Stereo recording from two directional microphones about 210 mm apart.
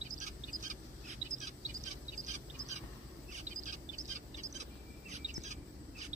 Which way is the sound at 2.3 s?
35° right (ahead or behind).